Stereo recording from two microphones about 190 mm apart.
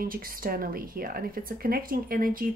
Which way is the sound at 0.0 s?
50° right (ahead or behind).